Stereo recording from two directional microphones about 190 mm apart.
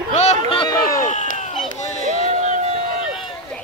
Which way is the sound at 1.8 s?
35° left (ahead or behind).